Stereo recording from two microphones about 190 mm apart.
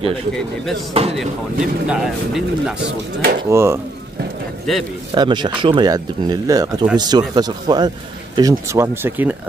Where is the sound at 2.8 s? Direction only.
55° right (ahead or behind).